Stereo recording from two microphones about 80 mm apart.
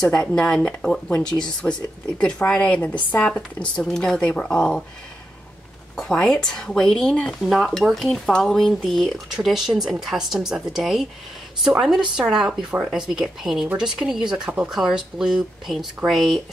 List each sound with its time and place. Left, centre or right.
0.0 s speech: centre
5.9 s speech: centre
14.7 s speech: centre